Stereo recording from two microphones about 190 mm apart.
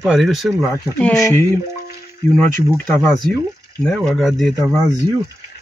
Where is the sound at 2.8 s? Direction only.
5° left (ahead or behind).